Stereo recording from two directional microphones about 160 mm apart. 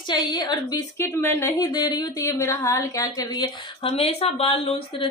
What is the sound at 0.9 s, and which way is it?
Speech, 15° left (ahead or behind).